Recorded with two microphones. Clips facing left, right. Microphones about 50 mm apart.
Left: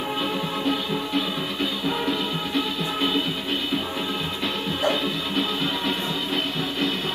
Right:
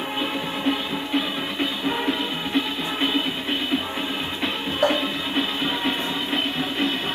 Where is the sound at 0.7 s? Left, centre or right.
Right.